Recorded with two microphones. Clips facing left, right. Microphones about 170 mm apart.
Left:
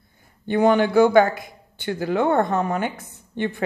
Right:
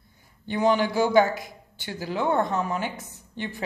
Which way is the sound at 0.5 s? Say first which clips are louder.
Left 5 dB; 55° left (ahead or behind).